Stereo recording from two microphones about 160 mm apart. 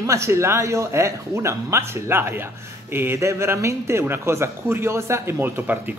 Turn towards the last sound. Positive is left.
turn(degrees=-15)  # may be behind; listen again after turning